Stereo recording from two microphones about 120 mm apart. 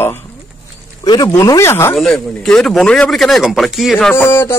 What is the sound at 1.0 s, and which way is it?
Speech, 35° left (ahead or behind).